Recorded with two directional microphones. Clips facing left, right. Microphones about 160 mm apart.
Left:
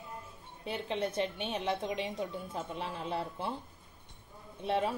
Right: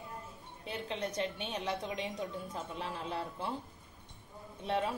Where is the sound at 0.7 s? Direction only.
30° left (ahead or behind).